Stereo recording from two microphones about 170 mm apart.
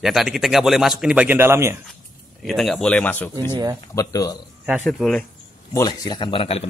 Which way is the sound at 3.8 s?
20° left (ahead or behind).